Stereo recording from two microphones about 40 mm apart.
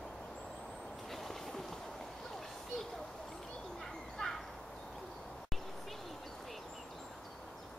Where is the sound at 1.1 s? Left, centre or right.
Centre.